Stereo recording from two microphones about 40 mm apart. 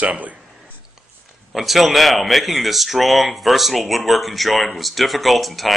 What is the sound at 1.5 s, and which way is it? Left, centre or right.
Speech, centre.